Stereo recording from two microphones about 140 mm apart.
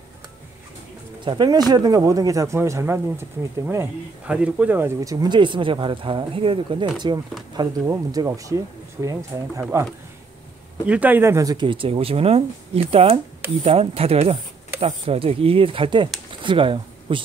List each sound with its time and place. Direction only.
1.2 s speech: 35° right (ahead or behind); by 5.1 s 15° right (ahead or behind)
5.1 s speech: 30° right (ahead or behind)
7.8 s speech: 25° right (ahead or behind)
10.9 s speech: 10° right (ahead or behind); by 16.1 s 40° right (ahead or behind)
16.3 s a sound: 35° right (ahead or behind)